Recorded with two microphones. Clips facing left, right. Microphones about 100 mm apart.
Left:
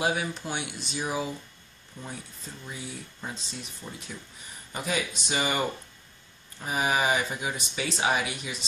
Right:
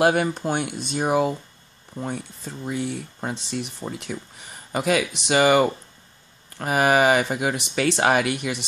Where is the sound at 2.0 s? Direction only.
70° right (ahead or behind).